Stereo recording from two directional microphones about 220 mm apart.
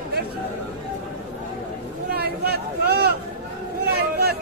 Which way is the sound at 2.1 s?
45° right (ahead or behind).